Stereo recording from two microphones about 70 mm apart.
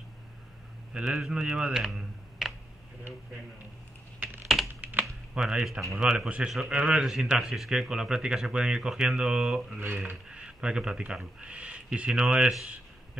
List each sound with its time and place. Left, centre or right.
0.9 s speech: centre
4.2 s computer keyboard: right
5.3 s speech: centre